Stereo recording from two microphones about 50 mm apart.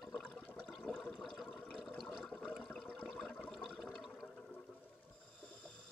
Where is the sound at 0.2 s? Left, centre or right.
Left; by 4.6 s centre.